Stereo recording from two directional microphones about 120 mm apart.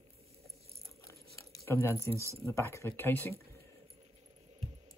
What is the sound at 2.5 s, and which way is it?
Speech, 25° left (ahead or behind).